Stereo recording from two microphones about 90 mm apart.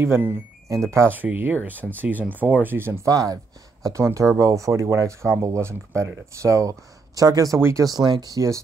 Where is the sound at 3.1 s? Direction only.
40° right (ahead or behind).